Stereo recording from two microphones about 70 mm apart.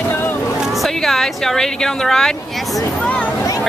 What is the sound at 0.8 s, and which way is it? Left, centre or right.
Speech, centre.